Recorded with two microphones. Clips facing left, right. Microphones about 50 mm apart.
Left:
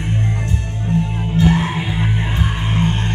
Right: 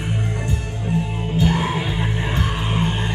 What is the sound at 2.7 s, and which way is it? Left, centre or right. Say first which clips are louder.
Music: left 4 dB; centre.